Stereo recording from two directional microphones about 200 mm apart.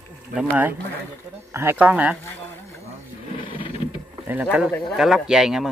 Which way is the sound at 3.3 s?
25° left (ahead or behind).